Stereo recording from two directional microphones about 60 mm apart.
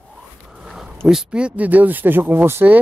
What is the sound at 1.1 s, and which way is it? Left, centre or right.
Speech, centre.